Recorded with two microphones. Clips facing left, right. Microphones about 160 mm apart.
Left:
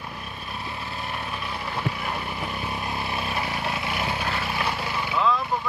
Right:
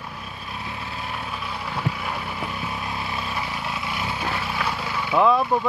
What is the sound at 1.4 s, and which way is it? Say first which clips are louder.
Vehicle: right 2 dB; centre (ahead or behind).